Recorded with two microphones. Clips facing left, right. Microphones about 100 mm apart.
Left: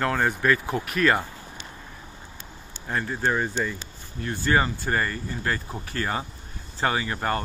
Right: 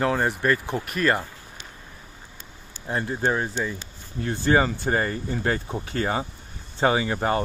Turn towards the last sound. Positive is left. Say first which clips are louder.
# right 3 dB
turn(degrees=-20)  # may be behind; listen again after turning